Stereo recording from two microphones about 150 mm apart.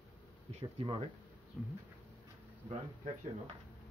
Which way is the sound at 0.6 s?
35° right (ahead or behind).